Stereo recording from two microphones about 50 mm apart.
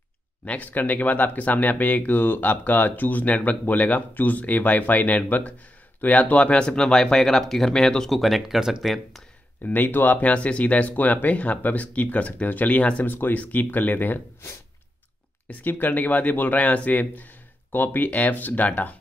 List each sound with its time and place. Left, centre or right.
0.5 s speech: left; by 8.1 s centre
8.1 s speech: centre
9.7 s speech: left
10.2 s speech: left
13.0 s speech: left
15.4 s speech: left